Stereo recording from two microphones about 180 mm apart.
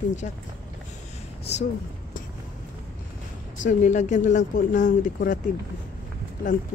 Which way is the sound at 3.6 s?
45° left (ahead or behind).